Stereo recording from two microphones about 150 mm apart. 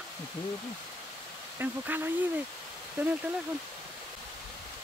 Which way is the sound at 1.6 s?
15° right (ahead or behind).